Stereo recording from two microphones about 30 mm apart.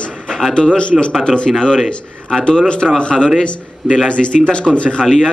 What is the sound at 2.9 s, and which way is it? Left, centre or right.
A man's voice, left.